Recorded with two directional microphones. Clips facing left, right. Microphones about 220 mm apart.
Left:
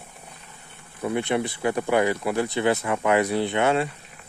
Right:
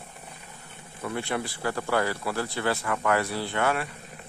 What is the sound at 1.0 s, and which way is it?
Speech, 20° left (ahead or behind).